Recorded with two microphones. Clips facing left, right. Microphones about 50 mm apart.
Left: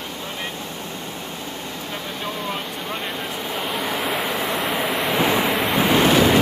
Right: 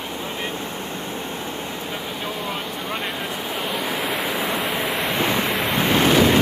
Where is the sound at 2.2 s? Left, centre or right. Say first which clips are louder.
Left 2 dB; centre.